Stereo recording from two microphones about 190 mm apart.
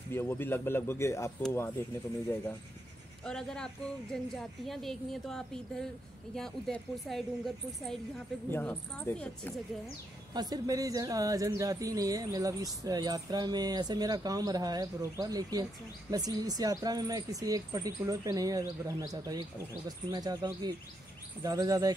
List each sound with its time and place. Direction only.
0.1 s speech: 10° left (ahead or behind)
3.3 s a woman's voice: 5° left (ahead or behind)
10.3 s speech: 20° right (ahead or behind)